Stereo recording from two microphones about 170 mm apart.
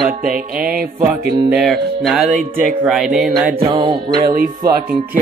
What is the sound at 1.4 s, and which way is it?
Speech, 10° right (ahead or behind).